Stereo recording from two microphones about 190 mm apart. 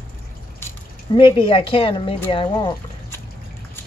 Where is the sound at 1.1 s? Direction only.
30° left (ahead or behind).